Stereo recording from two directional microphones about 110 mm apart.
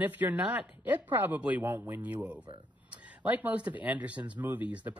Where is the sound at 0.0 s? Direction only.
15° right (ahead or behind).